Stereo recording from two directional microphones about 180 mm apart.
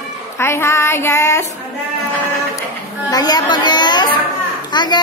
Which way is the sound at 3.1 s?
20° left (ahead or behind).